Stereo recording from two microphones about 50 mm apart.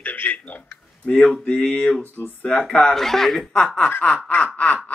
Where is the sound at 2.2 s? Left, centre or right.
Left.